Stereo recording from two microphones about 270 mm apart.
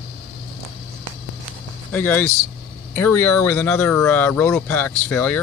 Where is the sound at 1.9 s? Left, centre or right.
Centre.